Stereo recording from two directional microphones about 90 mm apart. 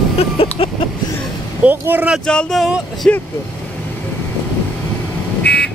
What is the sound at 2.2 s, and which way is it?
Speech, 10° left (ahead or behind).